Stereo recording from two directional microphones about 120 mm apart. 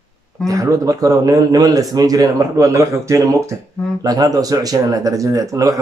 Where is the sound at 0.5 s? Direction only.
25° right (ahead or behind).